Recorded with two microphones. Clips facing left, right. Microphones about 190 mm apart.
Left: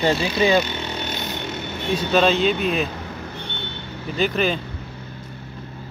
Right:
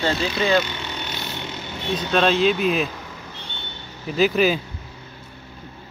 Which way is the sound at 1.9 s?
5° left (ahead or behind).